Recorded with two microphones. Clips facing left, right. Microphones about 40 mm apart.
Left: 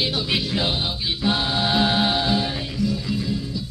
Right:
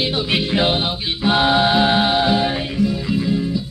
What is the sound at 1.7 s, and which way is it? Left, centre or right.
Music, right.